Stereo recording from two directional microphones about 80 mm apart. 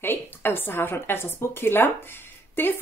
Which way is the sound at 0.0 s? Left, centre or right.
Left.